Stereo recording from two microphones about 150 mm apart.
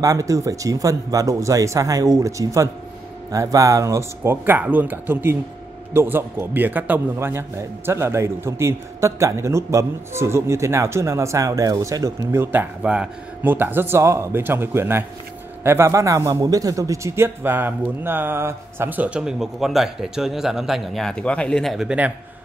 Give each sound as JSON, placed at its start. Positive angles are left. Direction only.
{"t": 0.0, "sound": "a man's voice", "side_deg": -25}